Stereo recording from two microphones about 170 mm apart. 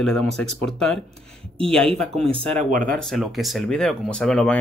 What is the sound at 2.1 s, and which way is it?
Speech, 35° right (ahead or behind).